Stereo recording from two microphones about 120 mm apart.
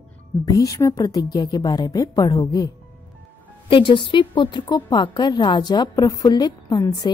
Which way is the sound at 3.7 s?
45° left (ahead or behind).